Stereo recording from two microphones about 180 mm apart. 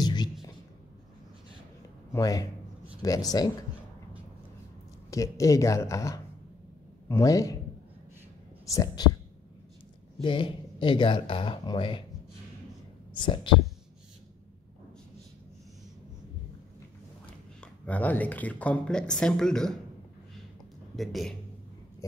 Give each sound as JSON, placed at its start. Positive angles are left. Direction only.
{"t": 0.0, "sound": "a sound", "side_deg": 25}
{"t": 2.1, "sound": "speech", "side_deg": 20}
{"t": 5.1, "sound": "speech", "side_deg": 20}
{"t": 8.7, "sound": "speech", "side_deg": 20}
{"t": 10.2, "sound": "speech", "side_deg": 25}
{"t": 13.3, "sound": "speech", "side_deg": 30}
{"t": 17.3, "sound": "speech", "side_deg": 5}
{"t": 20.9, "sound": "a man's voice", "side_deg": 0}